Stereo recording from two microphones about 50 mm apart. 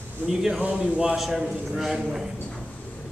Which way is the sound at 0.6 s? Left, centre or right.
Right.